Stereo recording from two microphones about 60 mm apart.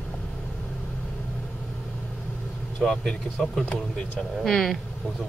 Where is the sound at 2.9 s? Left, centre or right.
Centre.